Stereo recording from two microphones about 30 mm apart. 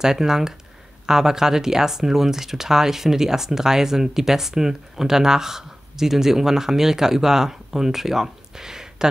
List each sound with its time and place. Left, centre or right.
0.0 s speech: centre